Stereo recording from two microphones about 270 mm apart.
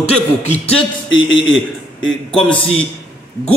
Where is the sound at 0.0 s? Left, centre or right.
Left.